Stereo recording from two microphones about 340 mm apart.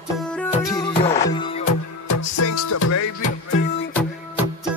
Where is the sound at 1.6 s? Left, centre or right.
Left.